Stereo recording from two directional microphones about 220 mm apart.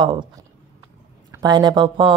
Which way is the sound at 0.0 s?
20° right (ahead or behind).